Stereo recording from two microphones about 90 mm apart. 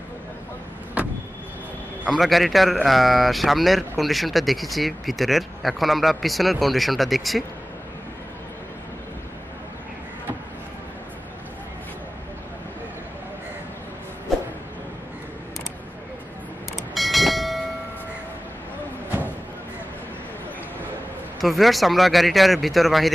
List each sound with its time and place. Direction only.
1.0 s vehicle: 15° right (ahead or behind)
2.1 s speech: centre (ahead or behind)
16.7 s train: centre (ahead or behind)
19.0 s a sound: 20° right (ahead or behind)
21.4 s speech: centre (ahead or behind)